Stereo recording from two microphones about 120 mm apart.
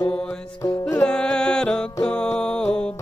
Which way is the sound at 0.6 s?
25° left (ahead or behind).